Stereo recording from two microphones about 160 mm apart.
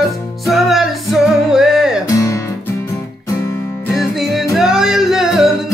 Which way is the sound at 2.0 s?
20° left (ahead or behind).